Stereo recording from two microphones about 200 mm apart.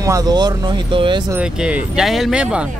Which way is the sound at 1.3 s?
5° right (ahead or behind).